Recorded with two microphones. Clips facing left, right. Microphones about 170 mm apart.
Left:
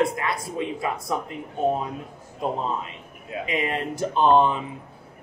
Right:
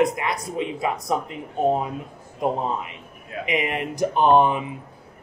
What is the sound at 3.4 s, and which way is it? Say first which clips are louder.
Speech: right 2 dB; 15° right (ahead or behind).